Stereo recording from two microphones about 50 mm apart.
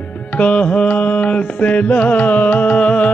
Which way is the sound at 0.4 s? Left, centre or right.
Left.